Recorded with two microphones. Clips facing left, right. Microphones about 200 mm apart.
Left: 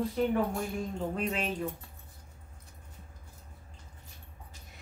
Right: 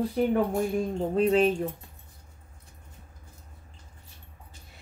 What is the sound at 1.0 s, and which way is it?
Speech, 35° right (ahead or behind).